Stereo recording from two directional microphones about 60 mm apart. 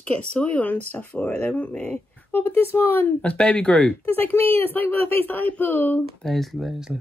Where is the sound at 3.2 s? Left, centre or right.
Left.